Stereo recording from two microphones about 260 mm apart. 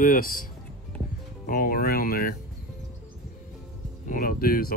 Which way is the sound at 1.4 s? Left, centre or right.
Left.